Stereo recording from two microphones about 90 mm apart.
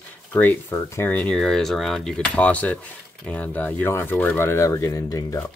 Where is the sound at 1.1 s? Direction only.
20° left (ahead or behind).